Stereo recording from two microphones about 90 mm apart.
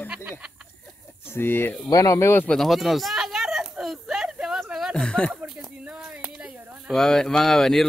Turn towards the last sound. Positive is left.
turn(degrees=0)  # may be behind; listen again after turning